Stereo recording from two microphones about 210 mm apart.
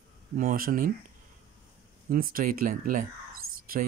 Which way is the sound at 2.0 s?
45° right (ahead or behind).